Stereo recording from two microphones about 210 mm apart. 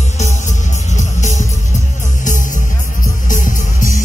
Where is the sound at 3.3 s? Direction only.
40° left (ahead or behind).